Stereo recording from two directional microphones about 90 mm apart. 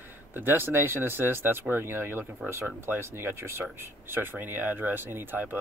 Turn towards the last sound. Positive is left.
turn(degrees=-20)  # may be behind; listen again after turning